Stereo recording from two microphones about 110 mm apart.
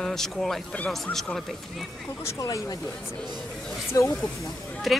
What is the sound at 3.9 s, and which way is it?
Speech, 30° left (ahead or behind).